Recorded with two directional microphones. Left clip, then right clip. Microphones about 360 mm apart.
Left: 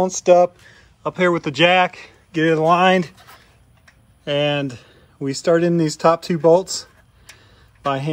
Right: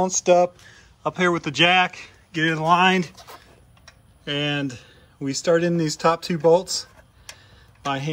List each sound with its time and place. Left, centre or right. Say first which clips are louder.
0.0 s speech: left 4 dB; centre
4.3 s speech: left 6 dB; centre